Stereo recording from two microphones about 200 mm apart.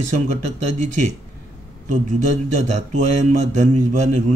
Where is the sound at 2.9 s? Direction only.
35° right (ahead or behind).